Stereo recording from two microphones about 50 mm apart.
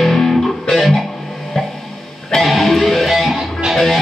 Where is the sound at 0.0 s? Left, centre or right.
Centre.